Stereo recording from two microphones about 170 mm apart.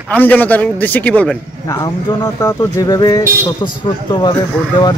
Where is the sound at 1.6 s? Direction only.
20° left (ahead or behind).